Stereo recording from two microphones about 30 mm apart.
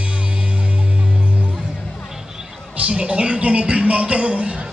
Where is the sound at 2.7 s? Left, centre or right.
Right.